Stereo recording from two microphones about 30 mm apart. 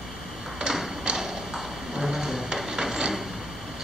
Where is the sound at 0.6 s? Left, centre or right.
Centre.